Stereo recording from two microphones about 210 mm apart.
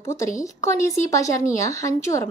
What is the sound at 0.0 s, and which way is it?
A woman's voice, 15° left (ahead or behind).